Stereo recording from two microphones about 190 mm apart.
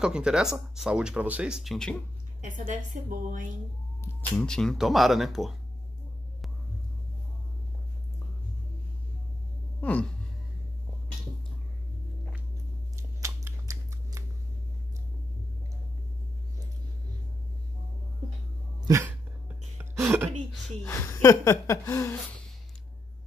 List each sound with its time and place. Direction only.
0.0 s speech: 5° right (ahead or behind)
2.4 s a woman's voice: 40° right (ahead or behind)
4.4 s speech: 5° left (ahead or behind)
9.8 s a sound: 10° left (ahead or behind)
12.9 s scissors: 15° right (ahead or behind)
18.8 s dog: 15° right (ahead or behind)
19.8 s a sound: 10° right (ahead or behind)
20.8 s gasp: 15° left (ahead or behind)